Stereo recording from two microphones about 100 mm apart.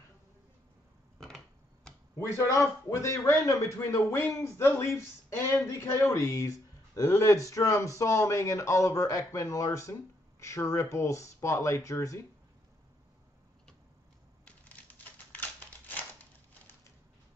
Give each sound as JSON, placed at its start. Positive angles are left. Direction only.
{"t": 1.1, "sound": "a sound", "side_deg": 5}
{"t": 2.1, "sound": "a man's voice", "side_deg": 30}
{"t": 15.0, "sound": "typewriter", "side_deg": 15}